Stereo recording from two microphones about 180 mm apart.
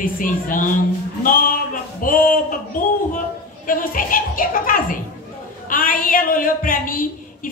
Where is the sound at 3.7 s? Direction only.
50° left (ahead or behind).